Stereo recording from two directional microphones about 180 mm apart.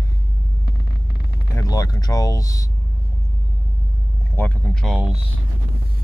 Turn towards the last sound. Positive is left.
turn(degrees=5)  # may be behind; listen again after turning